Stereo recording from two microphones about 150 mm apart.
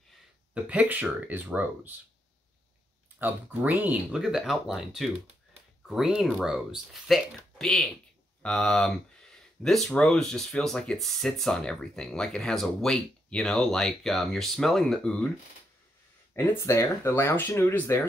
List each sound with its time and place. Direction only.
0.7 s speech: 10° right (ahead or behind)
3.2 s speech: 10° right (ahead or behind)
16.3 s speech: 20° left (ahead or behind)